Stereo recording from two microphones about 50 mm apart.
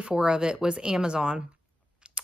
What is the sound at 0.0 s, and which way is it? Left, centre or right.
Speech, centre.